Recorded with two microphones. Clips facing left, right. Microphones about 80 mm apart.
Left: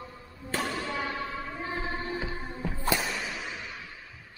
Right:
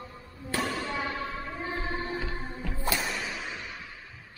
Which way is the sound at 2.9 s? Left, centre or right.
Centre.